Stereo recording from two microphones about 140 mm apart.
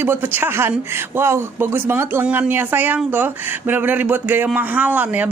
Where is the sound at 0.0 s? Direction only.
15° right (ahead or behind).